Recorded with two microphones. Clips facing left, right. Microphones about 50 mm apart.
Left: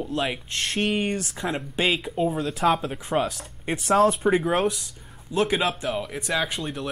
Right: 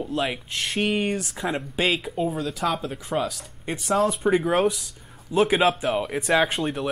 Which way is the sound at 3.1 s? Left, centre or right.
Centre.